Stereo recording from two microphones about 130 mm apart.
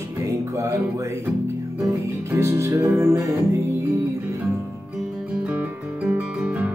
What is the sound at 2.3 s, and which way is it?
Music, 20° right (ahead or behind).